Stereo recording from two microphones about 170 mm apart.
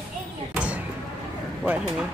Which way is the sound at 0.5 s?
10° right (ahead or behind).